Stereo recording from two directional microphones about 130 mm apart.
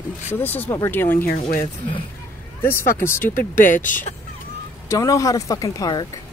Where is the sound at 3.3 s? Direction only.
90° left.